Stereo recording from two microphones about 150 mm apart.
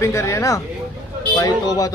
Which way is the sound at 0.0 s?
20° left (ahead or behind).